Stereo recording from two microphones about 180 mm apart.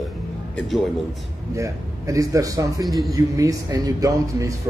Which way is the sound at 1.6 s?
20° right (ahead or behind).